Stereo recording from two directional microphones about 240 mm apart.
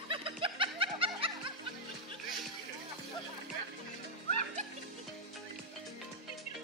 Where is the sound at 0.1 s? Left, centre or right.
Right.